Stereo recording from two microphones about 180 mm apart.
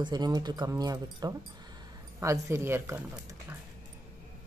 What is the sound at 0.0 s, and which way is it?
Speech, 20° right (ahead or behind).